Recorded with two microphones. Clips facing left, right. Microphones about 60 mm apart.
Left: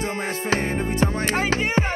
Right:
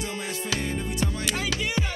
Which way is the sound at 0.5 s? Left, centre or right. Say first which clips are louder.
Left 7 dB; left.